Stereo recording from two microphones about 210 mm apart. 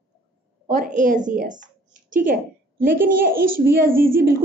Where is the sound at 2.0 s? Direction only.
40° right (ahead or behind).